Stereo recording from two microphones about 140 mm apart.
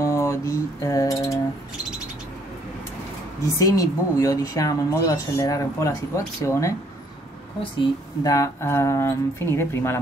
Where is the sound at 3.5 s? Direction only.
25° left (ahead or behind).